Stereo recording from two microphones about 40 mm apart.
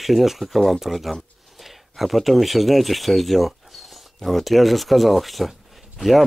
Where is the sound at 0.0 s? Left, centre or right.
Centre.